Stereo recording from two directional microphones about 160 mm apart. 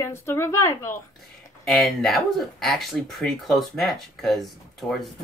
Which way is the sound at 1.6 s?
Centre (ahead or behind).